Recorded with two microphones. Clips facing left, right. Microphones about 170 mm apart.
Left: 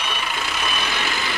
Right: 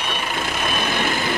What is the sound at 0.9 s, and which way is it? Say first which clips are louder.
Vehicle: right 5 dB; 50° right (ahead or behind).